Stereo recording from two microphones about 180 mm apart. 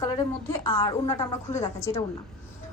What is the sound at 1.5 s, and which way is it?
Speech, 15° left (ahead or behind).